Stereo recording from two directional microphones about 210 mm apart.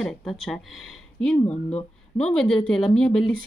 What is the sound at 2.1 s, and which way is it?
Speech, 5° left (ahead or behind).